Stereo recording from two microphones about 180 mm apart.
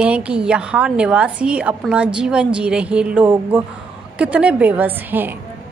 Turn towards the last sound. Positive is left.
turn(degrees=-10)  # may be behind; listen again after turning